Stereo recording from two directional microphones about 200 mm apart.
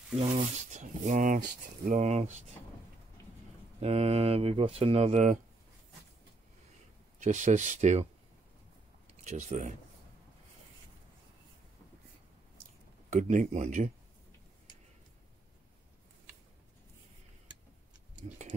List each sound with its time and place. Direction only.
0.2 s speech: 35° right (ahead or behind)
3.8 s speech: 30° right (ahead or behind)
7.2 s speech: 40° right (ahead or behind)
9.2 s speech: 35° right (ahead or behind)
13.1 s speech: 40° right (ahead or behind)